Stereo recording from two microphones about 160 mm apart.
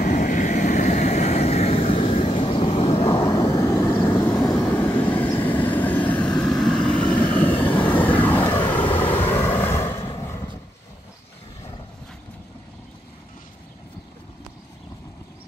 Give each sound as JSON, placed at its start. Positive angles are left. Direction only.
{"t": 0.0, "sound": "vehicle", "side_deg": 50}
{"t": 4.2, "sound": "vehicle", "side_deg": 15}
{"t": 8.6, "sound": "vehicle", "side_deg": 30}
{"t": 9.3, "sound": "vehicle", "side_deg": 15}
{"t": 10.2, "sound": "a sound", "side_deg": 15}